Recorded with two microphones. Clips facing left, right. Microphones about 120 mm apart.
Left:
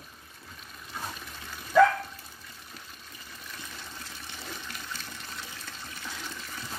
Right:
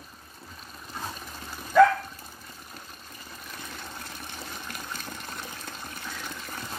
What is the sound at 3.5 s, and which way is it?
Water, 50° right (ahead or behind).